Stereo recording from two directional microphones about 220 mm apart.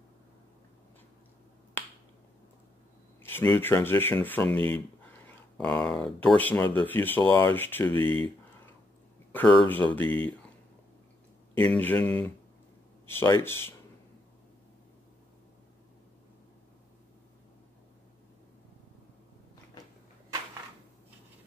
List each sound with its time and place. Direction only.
3.2 s speech: 10° left (ahead or behind)
4.6 s speech: 25° right (ahead or behind)
5.2 s a sound: 5° left (ahead or behind)
6.2 s speech: 5° left (ahead or behind)
9.3 s speech: 10° left (ahead or behind)
11.7 s speech: 5° left (ahead or behind)